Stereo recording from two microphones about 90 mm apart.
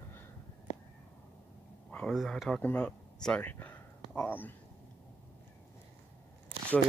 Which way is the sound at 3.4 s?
20° left (ahead or behind).